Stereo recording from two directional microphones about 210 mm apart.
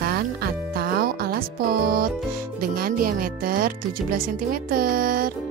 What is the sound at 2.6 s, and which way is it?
Music, 45° right (ahead or behind).